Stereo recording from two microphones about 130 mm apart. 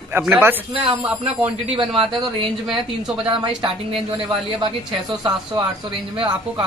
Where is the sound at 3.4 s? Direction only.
45° right (ahead or behind).